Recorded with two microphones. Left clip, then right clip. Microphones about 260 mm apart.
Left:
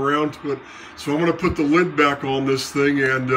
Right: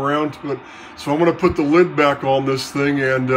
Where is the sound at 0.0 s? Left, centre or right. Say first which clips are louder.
Right 1 dB; centre.